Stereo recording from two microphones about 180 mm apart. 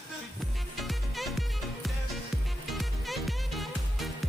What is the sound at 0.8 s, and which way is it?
Music, centre (ahead or behind).